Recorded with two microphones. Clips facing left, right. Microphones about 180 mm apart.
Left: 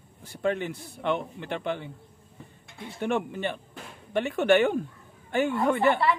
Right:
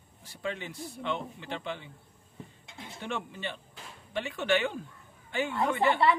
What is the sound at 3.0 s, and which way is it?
A man's voice, 55° left (ahead or behind).